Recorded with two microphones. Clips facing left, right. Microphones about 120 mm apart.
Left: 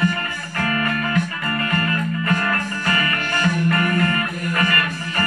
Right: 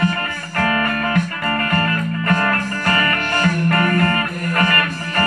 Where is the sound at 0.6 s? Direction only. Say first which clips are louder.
Right 3 dB; 50° right (ahead or behind).